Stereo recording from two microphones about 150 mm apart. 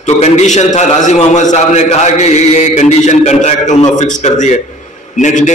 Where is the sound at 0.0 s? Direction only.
50° left (ahead or behind).